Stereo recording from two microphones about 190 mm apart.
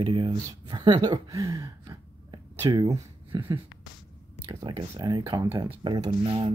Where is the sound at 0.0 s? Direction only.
30° right (ahead or behind).